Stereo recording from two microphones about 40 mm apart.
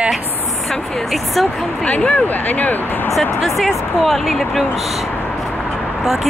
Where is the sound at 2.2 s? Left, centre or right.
Left.